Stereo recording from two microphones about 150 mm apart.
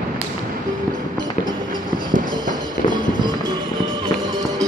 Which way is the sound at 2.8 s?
60° left (ahead or behind).